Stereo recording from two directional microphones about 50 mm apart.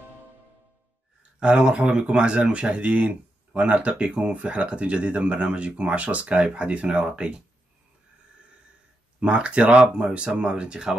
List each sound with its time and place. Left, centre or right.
1.4 s speech: centre
9.2 s speech: right